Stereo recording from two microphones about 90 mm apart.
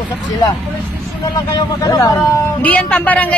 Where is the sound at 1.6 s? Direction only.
45° left (ahead or behind).